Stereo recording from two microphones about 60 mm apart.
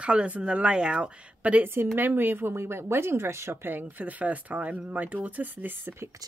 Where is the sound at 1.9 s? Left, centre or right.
Right.